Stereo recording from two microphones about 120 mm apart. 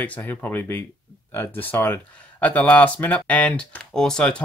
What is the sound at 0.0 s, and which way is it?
Speech, 10° left (ahead or behind).